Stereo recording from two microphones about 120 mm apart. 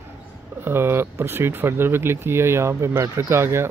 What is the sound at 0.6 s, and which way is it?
Speech, 20° right (ahead or behind).